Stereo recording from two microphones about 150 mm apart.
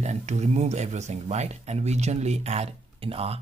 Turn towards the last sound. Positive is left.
turn(degrees=-40)  # may be behind; listen again after turning